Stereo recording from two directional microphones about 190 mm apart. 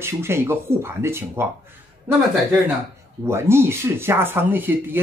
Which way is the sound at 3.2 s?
15° right (ahead or behind).